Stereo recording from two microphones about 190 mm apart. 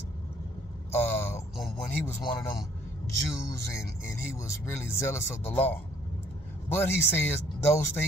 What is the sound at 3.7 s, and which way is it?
Speech, 15° left (ahead or behind).